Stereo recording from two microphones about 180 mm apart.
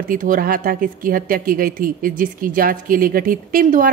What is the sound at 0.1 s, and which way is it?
Speech, 50° right (ahead or behind).